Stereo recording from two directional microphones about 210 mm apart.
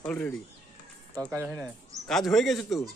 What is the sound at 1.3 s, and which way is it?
Speech, 10° right (ahead or behind).